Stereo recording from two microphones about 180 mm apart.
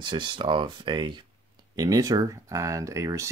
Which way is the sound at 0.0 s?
25° right (ahead or behind).